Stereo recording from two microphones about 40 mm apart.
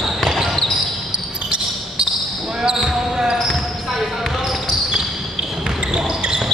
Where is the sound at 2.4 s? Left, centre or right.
Centre.